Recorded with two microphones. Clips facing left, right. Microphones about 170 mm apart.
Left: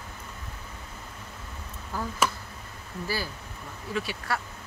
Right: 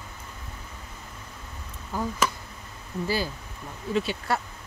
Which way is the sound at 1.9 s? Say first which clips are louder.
Right 3 dB; 15° right (ahead or behind).